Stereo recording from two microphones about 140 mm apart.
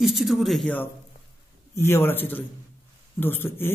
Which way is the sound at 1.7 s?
20° left (ahead or behind).